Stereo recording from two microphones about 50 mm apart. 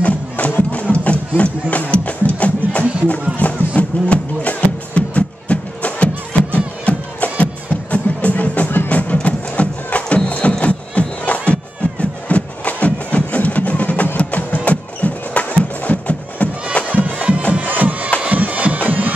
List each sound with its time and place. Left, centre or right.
0.0 s music: left
16.8 s bagpipes: right
17.8 s music: right